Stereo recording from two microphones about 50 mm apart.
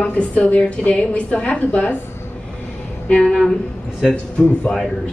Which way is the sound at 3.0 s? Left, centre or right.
Centre.